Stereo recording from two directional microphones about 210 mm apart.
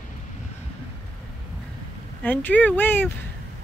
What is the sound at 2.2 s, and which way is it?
Speech, 10° left (ahead or behind).